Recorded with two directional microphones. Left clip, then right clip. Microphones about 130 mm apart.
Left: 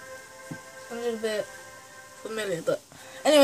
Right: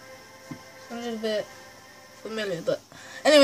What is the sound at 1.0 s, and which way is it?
Speech, 20° right (ahead or behind).